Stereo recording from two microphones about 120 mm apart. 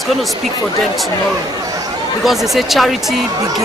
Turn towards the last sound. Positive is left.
turn(degrees=0)  # may be behind; listen again after turning